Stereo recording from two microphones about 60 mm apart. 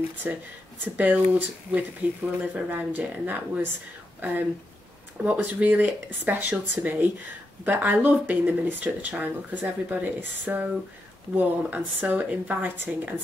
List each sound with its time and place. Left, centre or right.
0.2 s speech: right